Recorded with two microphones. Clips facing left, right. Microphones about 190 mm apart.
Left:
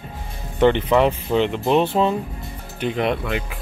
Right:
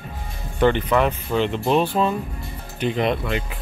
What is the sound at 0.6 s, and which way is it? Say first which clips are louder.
Speech: left 2 dB; 20° left (ahead or behind).